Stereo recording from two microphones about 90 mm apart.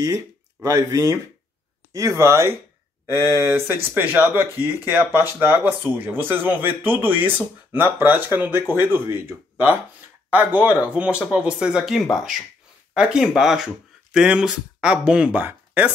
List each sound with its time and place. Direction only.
0.0 s speech: 40° right (ahead or behind); by 15.9 s 20° right (ahead or behind)